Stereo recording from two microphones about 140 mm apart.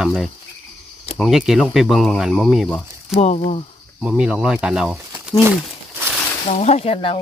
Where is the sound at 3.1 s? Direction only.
45° left (ahead or behind).